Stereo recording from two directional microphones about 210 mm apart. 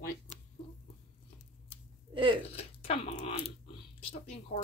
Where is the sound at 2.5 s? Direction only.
30° left (ahead or behind).